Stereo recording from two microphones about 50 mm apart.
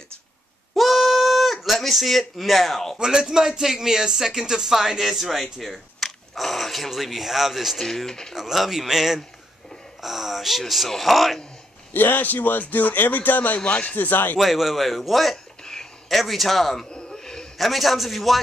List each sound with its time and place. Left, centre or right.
0.7 s bleat: centre
3.0 s speech: centre
7.8 s speech: centre
8.4 s a man's voice: centre
11.9 s a man's voice: left
14.4 s a man's voice: centre
15.6 s a sound: centre
16.1 s a man's voice: centre
16.9 s a sound: centre
17.6 s a man's voice: centre